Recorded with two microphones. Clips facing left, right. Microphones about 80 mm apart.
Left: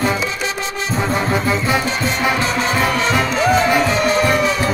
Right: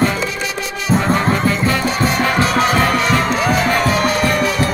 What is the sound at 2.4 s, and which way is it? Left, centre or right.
Music, right.